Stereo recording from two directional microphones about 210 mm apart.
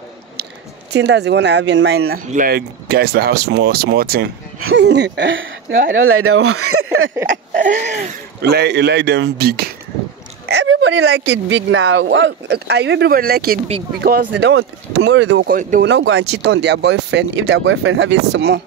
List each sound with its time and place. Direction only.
0.9 s speech: 55° right (ahead or behind)
4.6 s speech: 65° right (ahead or behind)
5.9 s speech: 75° right (ahead or behind); by 7.1 s 90° right
7.2 s a sound: 40° right (ahead or behind)
8.4 s speech: 50° right (ahead or behind)
15.5 s a sound: 40° right (ahead or behind)
15.9 s speech: 65° right (ahead or behind)